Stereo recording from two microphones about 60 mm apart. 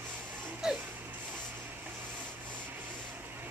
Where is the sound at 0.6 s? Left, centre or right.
Centre.